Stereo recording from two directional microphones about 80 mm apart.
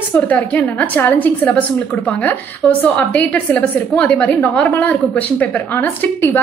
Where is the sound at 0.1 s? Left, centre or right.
Centre.